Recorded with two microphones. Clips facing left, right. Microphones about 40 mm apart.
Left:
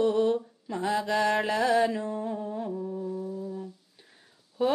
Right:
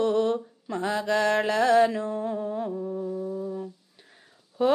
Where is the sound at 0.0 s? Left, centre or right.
Right.